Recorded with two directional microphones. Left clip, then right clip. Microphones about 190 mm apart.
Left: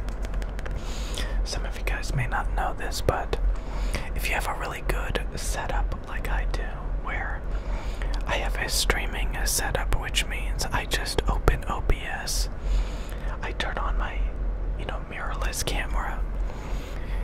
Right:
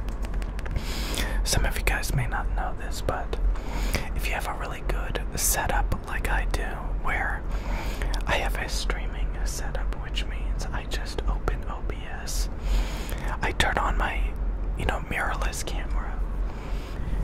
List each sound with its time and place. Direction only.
0.9 s whispering: 15° right (ahead or behind)
2.1 s speech: 15° left (ahead or behind)
5.3 s speech: 5° right (ahead or behind)
8.6 s speech: 20° left (ahead or behind)
13.3 s speech: 15° right (ahead or behind)
15.5 s speech: 15° left (ahead or behind)